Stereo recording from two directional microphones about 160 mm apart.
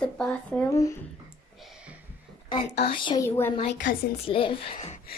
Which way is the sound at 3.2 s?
15° left (ahead or behind).